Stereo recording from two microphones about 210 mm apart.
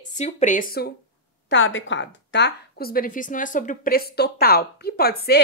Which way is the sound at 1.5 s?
65° left (ahead or behind).